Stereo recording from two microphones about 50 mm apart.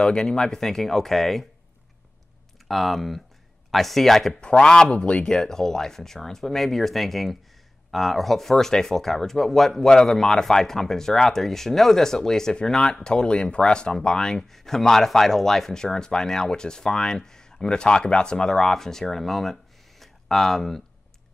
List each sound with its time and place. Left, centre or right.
0.0 s speech: centre
2.7 s speech: centre
4.3 s speech: centre
5.3 s speech: centre